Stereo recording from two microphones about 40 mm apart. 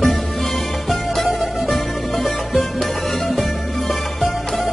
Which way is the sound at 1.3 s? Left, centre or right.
Centre.